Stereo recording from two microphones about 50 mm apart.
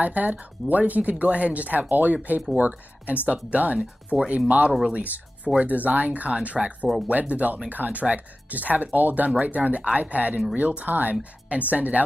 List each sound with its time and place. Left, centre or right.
0.0 s speech: right